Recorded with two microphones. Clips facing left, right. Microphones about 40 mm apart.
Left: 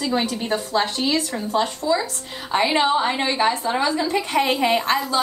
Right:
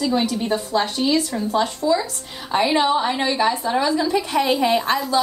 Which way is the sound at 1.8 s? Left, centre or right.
Centre.